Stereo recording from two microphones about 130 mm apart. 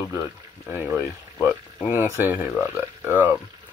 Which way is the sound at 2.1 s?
15° right (ahead or behind).